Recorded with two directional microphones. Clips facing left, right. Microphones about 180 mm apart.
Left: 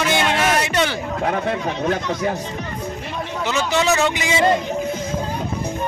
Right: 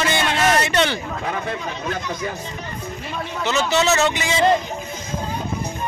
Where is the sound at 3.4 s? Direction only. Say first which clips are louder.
Right 1 dB; 15° left (ahead or behind).